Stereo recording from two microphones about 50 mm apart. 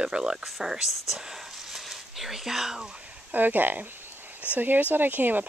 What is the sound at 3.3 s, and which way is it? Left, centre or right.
Speech, right.